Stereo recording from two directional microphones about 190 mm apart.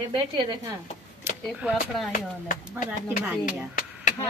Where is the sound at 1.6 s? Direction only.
Centre (ahead or behind).